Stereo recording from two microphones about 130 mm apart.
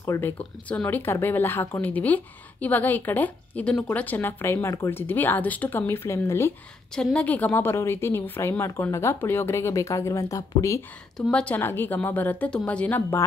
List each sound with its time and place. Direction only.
0.0 s a woman's voice: 20° left (ahead or behind)
7.0 s a woman's voice: 5° left (ahead or behind)